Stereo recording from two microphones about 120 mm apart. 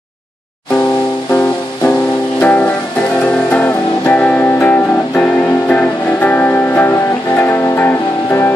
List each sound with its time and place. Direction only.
2.4 s music: 15° left (ahead or behind)